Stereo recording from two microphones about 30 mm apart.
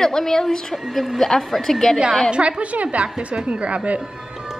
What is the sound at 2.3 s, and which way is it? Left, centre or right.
A woman's voice, right.